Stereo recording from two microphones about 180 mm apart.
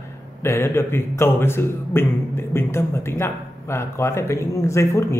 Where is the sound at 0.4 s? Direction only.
15° left (ahead or behind).